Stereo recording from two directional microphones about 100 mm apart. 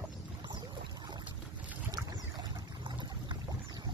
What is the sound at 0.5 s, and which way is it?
Boat, 50° right (ahead or behind).